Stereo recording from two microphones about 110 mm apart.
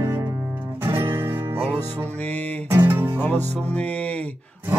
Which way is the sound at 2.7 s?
20° right (ahead or behind).